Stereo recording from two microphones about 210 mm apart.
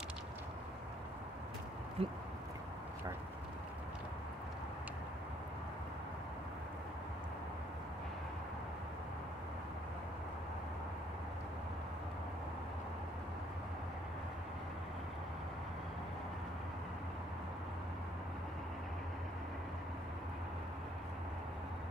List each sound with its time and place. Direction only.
2.0 s speech: 30° right (ahead or behind)